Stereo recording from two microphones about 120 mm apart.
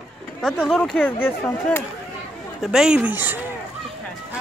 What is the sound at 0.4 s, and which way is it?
Speech, 5° left (ahead or behind).